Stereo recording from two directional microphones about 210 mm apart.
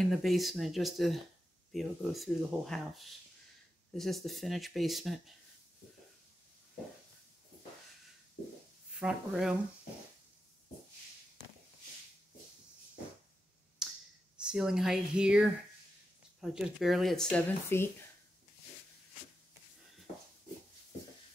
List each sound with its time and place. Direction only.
0.0 s speech: centre (ahead or behind)
9.0 s speech: 5° right (ahead or behind)
13.8 s a sound: 5° right (ahead or behind)
14.3 s speech: 5° right (ahead or behind)